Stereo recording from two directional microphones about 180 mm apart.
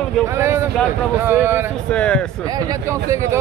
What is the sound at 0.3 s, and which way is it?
Speech, 15° right (ahead or behind).